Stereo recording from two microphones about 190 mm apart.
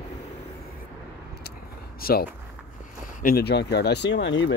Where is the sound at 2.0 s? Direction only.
50° left (ahead or behind).